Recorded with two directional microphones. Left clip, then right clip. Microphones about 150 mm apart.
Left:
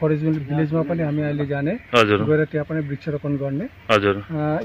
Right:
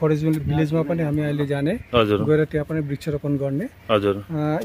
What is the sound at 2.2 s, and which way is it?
Speech, 40° right (ahead or behind).